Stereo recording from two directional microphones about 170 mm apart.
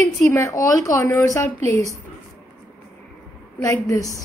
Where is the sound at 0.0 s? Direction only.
20° left (ahead or behind).